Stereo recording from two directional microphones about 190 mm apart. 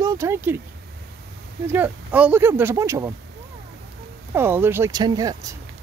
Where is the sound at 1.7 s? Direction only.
10° right (ahead or behind).